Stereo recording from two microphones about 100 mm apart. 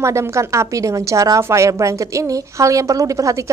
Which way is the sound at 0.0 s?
30° right (ahead or behind).